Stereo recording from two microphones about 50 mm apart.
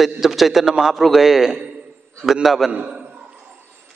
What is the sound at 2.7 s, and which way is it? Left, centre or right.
Speech, right.